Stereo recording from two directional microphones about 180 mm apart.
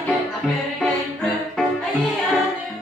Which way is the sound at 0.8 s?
Centre (ahead or behind).